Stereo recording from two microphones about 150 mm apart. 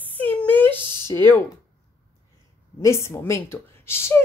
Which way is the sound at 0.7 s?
15° left (ahead or behind).